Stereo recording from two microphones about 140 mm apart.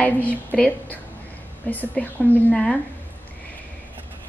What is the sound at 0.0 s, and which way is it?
Speech, 10° left (ahead or behind).